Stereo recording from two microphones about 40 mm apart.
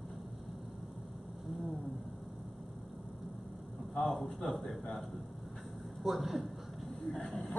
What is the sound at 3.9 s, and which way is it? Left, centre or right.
A man's voice, centre.